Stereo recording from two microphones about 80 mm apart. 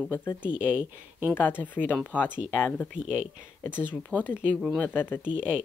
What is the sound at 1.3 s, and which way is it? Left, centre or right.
Speech, left.